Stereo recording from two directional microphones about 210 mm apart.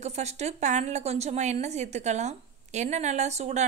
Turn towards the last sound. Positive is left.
turn(degrees=-30)  # may be behind; listen again after turning